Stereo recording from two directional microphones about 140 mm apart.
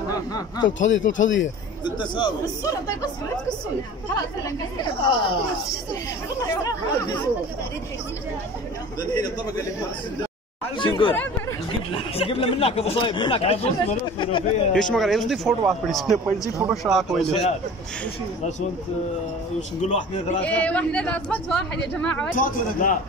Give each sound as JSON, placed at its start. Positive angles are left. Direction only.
{"t": 0.1, "sound": "speech", "side_deg": 25}
{"t": 0.7, "sound": "a man's voice", "side_deg": 65}
{"t": 1.9, "sound": "speech", "side_deg": 35}
{"t": 4.8, "sound": "speech", "side_deg": 35}
{"t": 6.3, "sound": "speech", "side_deg": 25}
{"t": 10.8, "sound": "speech", "side_deg": 40}
{"t": 14.7, "sound": "speech", "side_deg": 5}
{"t": 17.3, "sound": "speech", "side_deg": 50}
{"t": 19.9, "sound": "a man's voice", "side_deg": 55}
{"t": 20.4, "sound": "speech", "side_deg": 10}
{"t": 22.3, "sound": "speech", "side_deg": 75}